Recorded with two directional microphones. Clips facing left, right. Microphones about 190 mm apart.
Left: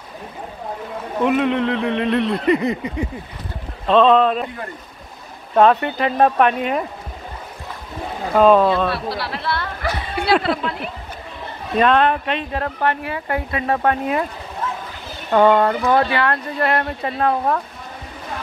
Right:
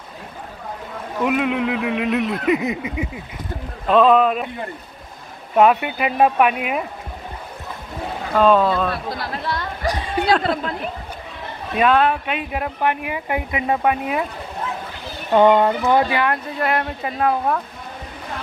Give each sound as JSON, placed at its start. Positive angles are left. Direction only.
{"t": 1.2, "sound": "speech", "side_deg": -5}
{"t": 5.5, "sound": "speech", "side_deg": -10}
{"t": 8.4, "sound": "speech", "side_deg": 5}
{"t": 8.9, "sound": "a woman's voice", "side_deg": -45}
{"t": 11.7, "sound": "speech", "side_deg": -5}
{"t": 15.3, "sound": "speech", "side_deg": -15}
{"t": 16.5, "sound": "speech", "side_deg": -5}